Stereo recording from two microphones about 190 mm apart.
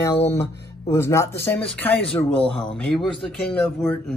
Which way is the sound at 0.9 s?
15° left (ahead or behind).